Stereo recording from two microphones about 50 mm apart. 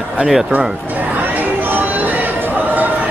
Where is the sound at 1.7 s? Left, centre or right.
Right.